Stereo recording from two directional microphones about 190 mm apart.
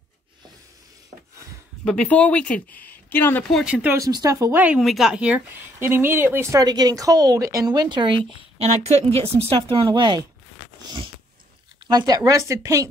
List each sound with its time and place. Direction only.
1.9 s a woman's voice: 5° left (ahead or behind); by 10.2 s 25° right (ahead or behind)
11.9 s speech: 20° right (ahead or behind)